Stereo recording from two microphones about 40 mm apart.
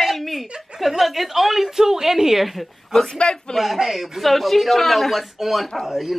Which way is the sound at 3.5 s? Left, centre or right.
Centre.